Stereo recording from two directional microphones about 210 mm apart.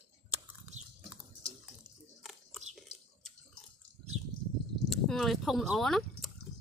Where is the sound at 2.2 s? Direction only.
Centre (ahead or behind).